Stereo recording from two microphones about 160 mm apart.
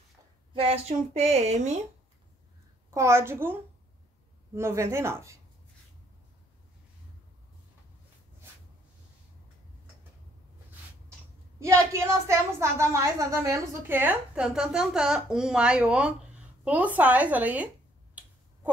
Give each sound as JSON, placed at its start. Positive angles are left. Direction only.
{"t": 0.5, "sound": "speech", "side_deg": -35}
{"t": 2.9, "sound": "a woman's voice", "side_deg": -15}
{"t": 4.6, "sound": "a woman's voice", "side_deg": -15}
{"t": 11.6, "sound": "a woman's voice", "side_deg": -15}